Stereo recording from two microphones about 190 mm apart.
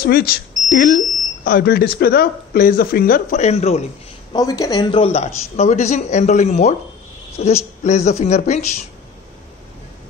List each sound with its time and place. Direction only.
0.0 s speech: 55° left (ahead or behind); by 3.8 s 35° left (ahead or behind)
4.3 s speech: 20° left (ahead or behind); by 8.6 s 35° left (ahead or behind)